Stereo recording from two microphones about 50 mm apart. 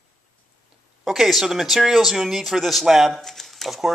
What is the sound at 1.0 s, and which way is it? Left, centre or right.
Speech, centre.